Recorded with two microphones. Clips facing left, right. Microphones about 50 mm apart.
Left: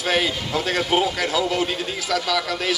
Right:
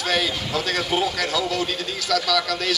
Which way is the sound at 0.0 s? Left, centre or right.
Centre.